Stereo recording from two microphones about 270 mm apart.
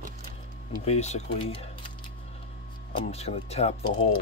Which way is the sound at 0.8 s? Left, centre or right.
Left.